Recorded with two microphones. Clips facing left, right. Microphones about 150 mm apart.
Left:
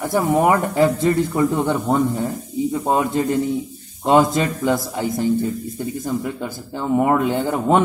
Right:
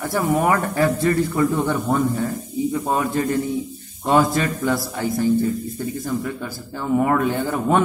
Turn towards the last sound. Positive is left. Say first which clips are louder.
# left 2 dB
turn(degrees=15)  # may be behind; listen again after turning